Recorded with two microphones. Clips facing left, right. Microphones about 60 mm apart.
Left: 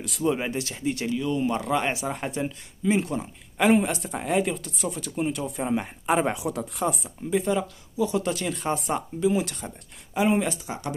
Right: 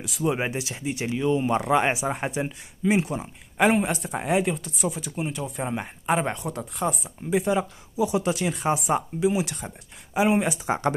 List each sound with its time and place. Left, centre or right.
0.2 s speech: centre
7.2 s speech: centre